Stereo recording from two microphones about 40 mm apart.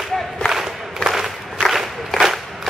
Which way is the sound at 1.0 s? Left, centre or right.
Centre.